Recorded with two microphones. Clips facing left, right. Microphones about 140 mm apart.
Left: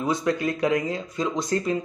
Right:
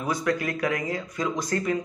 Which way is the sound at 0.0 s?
25° left (ahead or behind).